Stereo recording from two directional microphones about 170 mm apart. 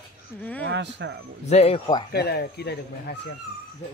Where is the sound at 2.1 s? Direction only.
70° left (ahead or behind).